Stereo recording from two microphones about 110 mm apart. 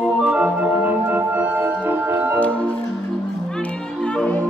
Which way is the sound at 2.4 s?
10° left (ahead or behind).